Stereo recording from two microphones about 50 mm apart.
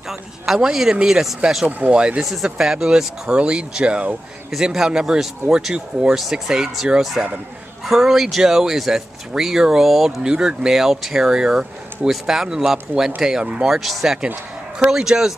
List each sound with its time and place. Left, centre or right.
0.1 s speech: centre
1.7 s speech: right
2.2 s a man's voice: centre
2.5 s speech: centre
4.5 s a man's voice: centre
10.2 s speech: centre
13.7 s a man's voice: centre